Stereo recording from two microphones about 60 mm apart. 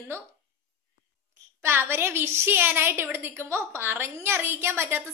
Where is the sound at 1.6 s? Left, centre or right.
Right.